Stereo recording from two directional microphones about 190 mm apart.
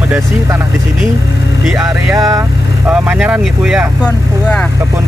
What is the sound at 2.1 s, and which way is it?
Speech, 15° right (ahead or behind).